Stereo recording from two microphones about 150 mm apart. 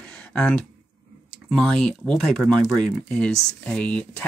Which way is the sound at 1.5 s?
5° left (ahead or behind).